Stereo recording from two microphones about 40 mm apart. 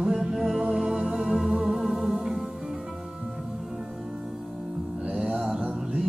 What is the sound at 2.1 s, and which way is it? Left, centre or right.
Music, right.